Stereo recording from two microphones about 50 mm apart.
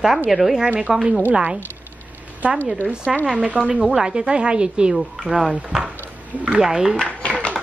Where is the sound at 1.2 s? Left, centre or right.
Right.